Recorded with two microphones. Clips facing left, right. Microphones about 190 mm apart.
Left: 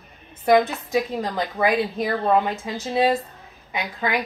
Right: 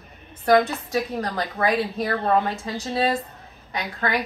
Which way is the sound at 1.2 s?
5° left (ahead or behind).